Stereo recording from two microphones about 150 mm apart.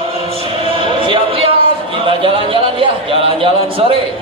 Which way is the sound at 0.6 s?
35° right (ahead or behind).